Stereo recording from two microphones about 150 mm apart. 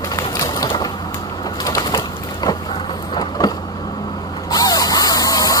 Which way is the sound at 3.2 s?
25° left (ahead or behind).